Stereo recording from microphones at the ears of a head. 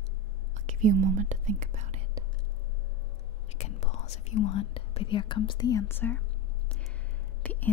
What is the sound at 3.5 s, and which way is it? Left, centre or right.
Speech, left.